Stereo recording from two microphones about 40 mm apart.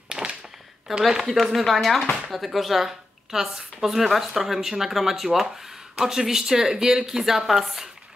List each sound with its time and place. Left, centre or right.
0.1 s a sound: right
1.0 s speech: centre
1.3 s speech: centre